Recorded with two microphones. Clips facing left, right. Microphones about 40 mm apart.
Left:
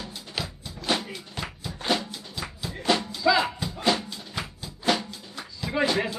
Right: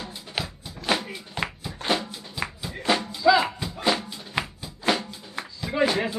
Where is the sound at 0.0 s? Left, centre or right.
Right.